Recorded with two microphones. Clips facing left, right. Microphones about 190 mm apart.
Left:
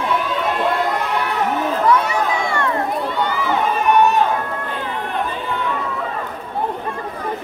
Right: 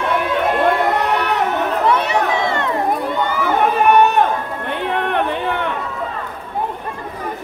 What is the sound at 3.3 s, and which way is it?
Run, 65° right (ahead or behind).